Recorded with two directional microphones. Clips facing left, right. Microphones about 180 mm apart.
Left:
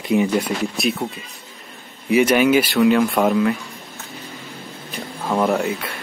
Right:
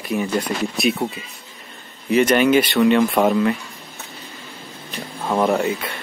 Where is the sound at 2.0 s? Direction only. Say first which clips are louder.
Even; 10° left (ahead or behind).